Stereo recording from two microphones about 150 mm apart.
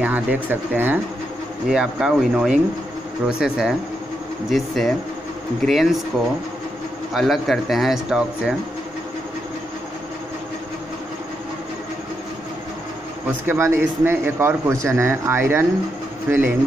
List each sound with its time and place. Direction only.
0.0 s a man's voice: 10° right (ahead or behind)
7.2 s speech: centre (ahead or behind)
13.5 s a man's voice: 15° right (ahead or behind)